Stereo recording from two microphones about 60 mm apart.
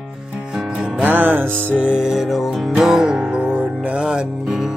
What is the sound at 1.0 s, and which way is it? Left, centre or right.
Music, right.